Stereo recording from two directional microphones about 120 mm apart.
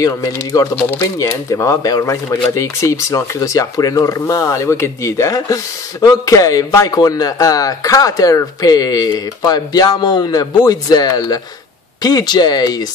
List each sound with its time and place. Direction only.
0.0 s speech: 30° left (ahead or behind)